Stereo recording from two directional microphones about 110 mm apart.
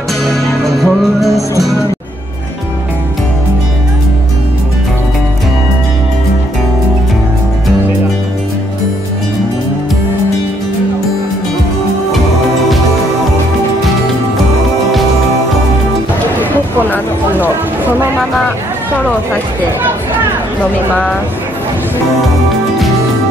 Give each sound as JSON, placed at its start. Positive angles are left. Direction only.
{"t": 0.3, "sound": "music", "side_deg": 0}
{"t": 16.3, "sound": "music", "side_deg": 15}